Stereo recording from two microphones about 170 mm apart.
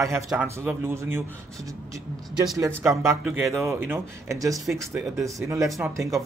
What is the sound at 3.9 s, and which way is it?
Speech, 20° right (ahead or behind).